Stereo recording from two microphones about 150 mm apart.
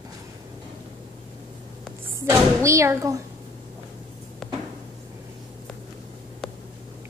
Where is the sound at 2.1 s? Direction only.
20° right (ahead or behind).